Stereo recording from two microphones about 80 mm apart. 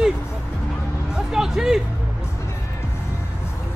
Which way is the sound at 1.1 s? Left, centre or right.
Centre.